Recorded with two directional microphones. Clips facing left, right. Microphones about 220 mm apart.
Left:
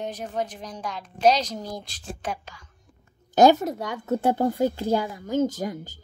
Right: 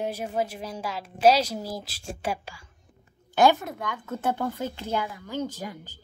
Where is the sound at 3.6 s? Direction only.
40° left (ahead or behind).